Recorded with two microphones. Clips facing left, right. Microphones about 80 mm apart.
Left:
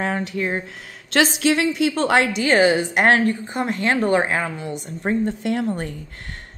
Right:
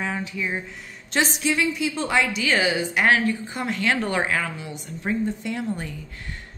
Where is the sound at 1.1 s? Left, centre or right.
Left.